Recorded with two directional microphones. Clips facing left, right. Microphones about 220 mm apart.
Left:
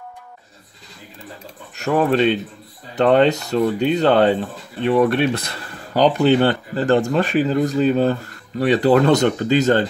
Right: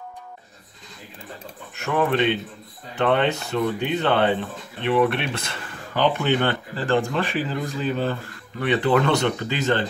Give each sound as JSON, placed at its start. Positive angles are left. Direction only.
{"t": 1.8, "sound": "speech", "side_deg": 35}